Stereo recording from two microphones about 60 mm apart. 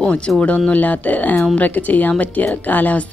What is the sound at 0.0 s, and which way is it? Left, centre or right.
A woman's voice, centre.